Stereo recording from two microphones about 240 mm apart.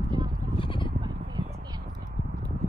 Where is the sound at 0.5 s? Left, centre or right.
Left.